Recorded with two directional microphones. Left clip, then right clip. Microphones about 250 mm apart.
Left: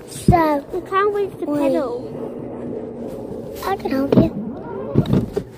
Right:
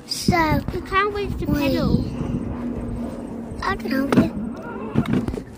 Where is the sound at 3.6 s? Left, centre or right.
Centre.